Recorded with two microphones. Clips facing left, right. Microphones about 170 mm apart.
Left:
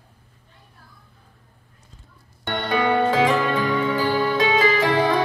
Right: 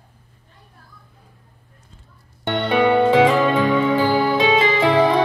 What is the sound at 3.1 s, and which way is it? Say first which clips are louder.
Music: right 5 dB; 25° right (ahead or behind).